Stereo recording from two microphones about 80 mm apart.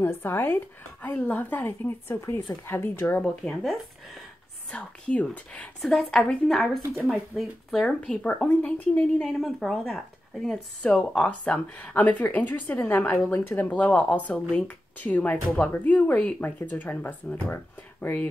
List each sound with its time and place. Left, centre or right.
0.0 s speech: left
4.6 s speech: centre
5.8 s a woman's voice: centre
7.8 s speech: centre
9.2 s a woman's voice: centre